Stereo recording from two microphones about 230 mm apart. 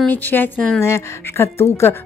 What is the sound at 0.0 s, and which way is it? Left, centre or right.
A woman's voice, centre.